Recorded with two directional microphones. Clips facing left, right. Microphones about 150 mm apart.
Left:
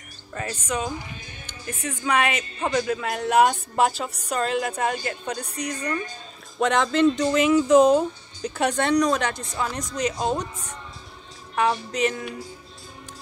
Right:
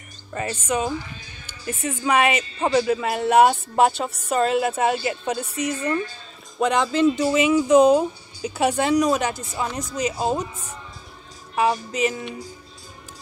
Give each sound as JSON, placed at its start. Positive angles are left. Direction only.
{"t": 0.3, "sound": "speech", "side_deg": -5}